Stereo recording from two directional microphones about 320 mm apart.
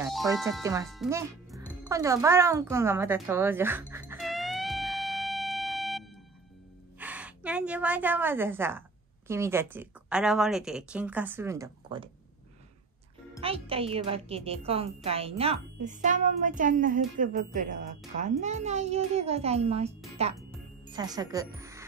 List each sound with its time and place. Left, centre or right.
0.0 s music: centre
7.0 s a woman's voice: centre
13.4 s a child's voice: centre